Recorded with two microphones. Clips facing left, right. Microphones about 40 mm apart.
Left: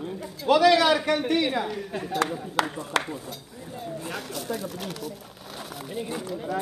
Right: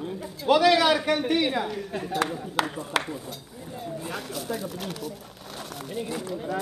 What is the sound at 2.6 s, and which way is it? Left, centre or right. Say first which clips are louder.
Speech: left 1 dB; centre.